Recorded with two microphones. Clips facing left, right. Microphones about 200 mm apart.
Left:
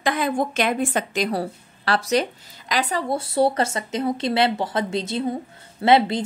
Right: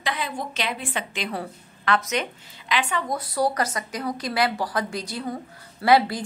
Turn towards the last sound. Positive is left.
turn(degrees=25)  # may be behind; listen again after turning